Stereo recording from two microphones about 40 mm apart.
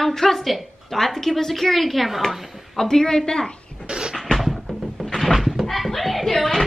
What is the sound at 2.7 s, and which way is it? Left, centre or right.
A woman's voice, centre.